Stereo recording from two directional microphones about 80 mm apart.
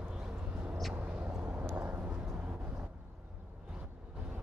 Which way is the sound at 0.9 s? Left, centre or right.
Centre.